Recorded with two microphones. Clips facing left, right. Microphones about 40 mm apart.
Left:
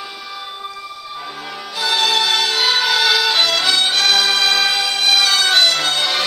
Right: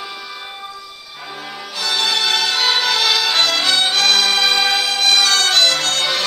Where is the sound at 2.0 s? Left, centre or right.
Centre.